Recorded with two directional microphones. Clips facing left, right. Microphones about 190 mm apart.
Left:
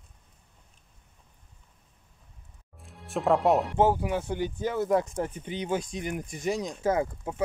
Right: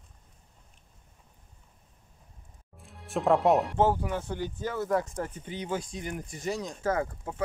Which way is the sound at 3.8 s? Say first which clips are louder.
Left 2 dB; 10° left (ahead or behind).